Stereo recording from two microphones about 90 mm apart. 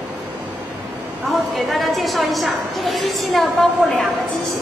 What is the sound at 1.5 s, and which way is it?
A woman's voice, centre (ahead or behind).